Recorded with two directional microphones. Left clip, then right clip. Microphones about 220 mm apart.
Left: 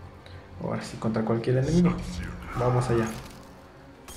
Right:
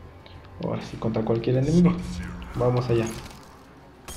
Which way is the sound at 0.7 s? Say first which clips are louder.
Right 1 dB; 15° right (ahead or behind).